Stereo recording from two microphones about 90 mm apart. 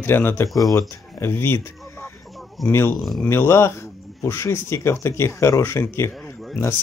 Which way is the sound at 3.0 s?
Centre (ahead or behind).